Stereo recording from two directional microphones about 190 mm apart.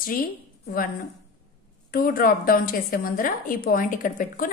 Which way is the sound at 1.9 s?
50° left (ahead or behind).